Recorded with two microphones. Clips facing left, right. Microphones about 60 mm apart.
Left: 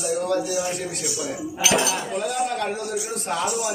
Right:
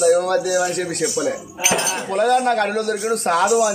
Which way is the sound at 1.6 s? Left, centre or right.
Right.